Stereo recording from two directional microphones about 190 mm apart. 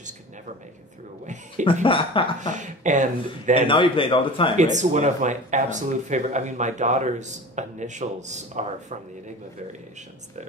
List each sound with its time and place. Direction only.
1.2 s speech: 40° right (ahead or behind)
1.7 s a man's voice: 25° left (ahead or behind)
2.4 s speech: 40° right (ahead or behind)
3.6 s a man's voice: 25° left (ahead or behind)
4.6 s speech: 40° right (ahead or behind)